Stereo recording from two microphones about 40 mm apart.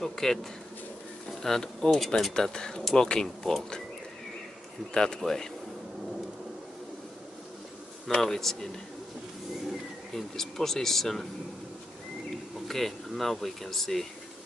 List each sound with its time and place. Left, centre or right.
0.0 s speech: centre
2.3 s speech: centre
4.9 s speech: centre
8.2 s speech: centre
9.7 s speech: centre
12.6 s speech: centre